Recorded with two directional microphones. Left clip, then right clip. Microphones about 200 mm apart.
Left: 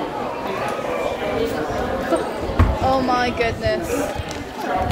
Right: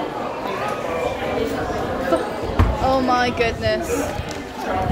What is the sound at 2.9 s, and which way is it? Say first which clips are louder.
Speech: right 1 dB; 20° right (ahead or behind).